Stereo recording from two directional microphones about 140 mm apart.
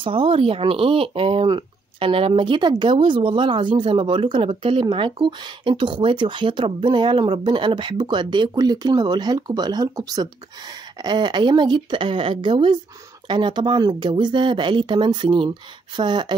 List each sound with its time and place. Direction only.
0.0 s speech: 40° right (ahead or behind)